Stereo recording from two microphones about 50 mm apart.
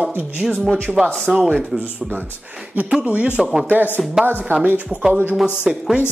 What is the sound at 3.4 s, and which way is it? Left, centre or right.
Speech, centre.